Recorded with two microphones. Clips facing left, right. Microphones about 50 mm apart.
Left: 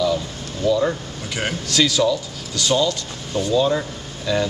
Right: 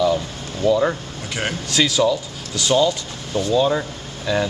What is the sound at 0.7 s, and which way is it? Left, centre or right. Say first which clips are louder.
Speech: right 1 dB; centre.